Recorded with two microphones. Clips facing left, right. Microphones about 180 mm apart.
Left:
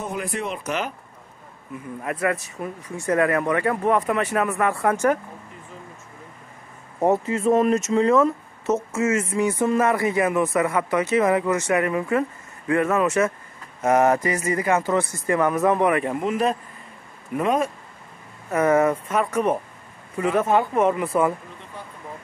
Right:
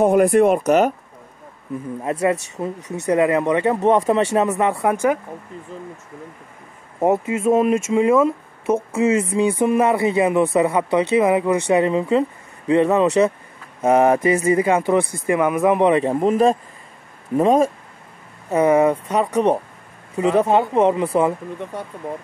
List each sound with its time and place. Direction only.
0.0 s speech: 55° right (ahead or behind)
2.0 s speech: 25° right (ahead or behind)
2.3 s speech: 75° right (ahead or behind)
3.1 s speech: 20° right (ahead or behind)
7.0 s speech: 15° right (ahead or behind)
15.2 s speech: 15° right (ahead or behind); by 16.5 s 35° right (ahead or behind)
18.5 s speech: 15° right (ahead or behind)
19.1 s speech: 35° right (ahead or behind)